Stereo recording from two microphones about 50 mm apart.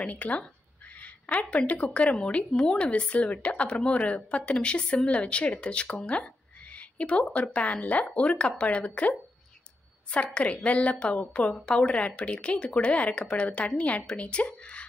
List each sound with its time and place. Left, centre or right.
0.0 s a woman's voice: left
2.9 s a woman's voice: left